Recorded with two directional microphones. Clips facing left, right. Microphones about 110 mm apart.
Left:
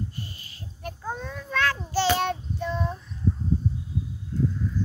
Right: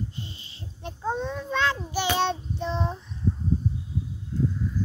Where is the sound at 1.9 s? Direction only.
15° right (ahead or behind).